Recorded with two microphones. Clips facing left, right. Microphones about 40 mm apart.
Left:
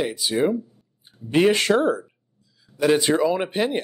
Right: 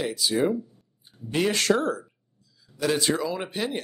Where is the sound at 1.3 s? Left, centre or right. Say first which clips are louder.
Left 5 dB; left.